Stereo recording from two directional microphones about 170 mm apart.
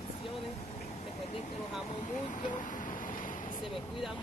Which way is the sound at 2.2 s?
50° left (ahead or behind).